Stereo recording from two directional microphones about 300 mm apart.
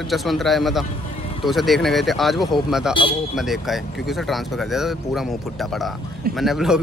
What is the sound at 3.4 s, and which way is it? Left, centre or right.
Speech, centre.